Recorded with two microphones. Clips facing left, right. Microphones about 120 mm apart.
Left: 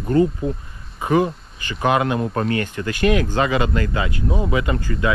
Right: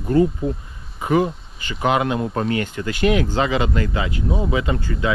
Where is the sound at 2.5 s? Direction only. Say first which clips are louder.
Even; 25° right (ahead or behind).